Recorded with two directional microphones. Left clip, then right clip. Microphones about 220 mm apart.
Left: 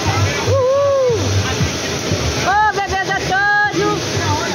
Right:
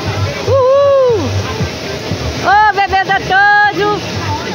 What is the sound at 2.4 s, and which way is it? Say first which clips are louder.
Vehicle: right 6 dB; 20° right (ahead or behind).